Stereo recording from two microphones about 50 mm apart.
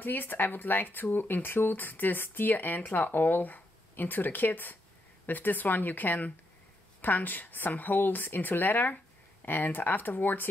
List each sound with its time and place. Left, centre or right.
0.0 s speech: left